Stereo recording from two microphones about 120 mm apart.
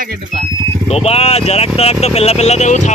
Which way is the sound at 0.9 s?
60° left (ahead or behind).